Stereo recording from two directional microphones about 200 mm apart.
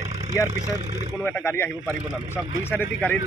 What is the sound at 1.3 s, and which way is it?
Speech, 10° left (ahead or behind).